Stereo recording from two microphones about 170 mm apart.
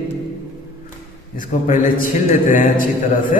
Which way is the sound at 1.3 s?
50° left (ahead or behind).